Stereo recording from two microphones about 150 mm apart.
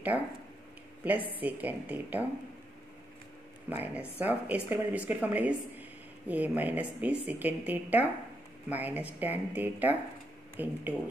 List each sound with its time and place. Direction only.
1.0 s a woman's voice: 10° right (ahead or behind)
3.6 s a woman's voice: 10° right (ahead or behind)